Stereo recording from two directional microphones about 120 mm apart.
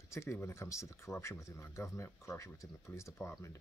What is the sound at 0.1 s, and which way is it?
Speech, 20° left (ahead or behind).